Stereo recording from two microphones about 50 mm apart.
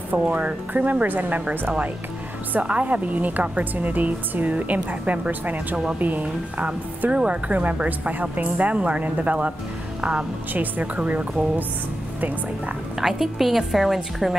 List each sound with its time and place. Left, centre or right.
0.1 s a woman's voice: right
2.6 s a woman's voice: right
10.5 s a woman's voice: right
13.0 s a woman's voice: centre